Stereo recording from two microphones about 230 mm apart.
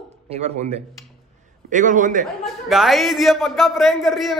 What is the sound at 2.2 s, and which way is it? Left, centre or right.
A man's voice, centre.